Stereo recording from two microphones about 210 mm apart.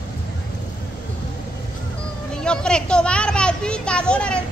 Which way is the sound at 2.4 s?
5° left (ahead or behind).